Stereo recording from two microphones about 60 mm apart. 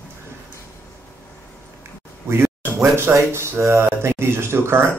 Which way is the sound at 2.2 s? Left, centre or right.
Right.